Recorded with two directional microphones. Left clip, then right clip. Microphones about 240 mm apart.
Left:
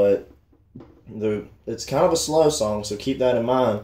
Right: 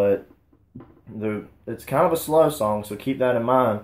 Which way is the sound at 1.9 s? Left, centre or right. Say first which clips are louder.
Even; right.